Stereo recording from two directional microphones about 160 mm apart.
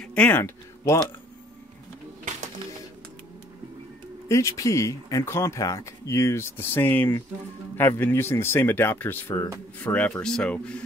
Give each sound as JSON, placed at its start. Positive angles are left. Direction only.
{"t": 0.0, "sound": "speech", "side_deg": 10}
{"t": 4.3, "sound": "speech", "side_deg": 20}